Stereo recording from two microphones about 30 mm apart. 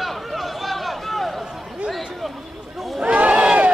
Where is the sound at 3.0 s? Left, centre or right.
Right.